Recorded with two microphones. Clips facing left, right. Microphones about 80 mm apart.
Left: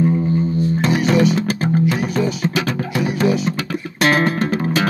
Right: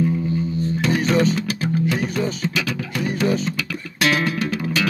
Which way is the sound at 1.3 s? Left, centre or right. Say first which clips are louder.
Left 4 dB; left.